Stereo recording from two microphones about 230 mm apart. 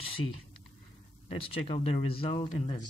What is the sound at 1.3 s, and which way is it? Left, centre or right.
Speech, left.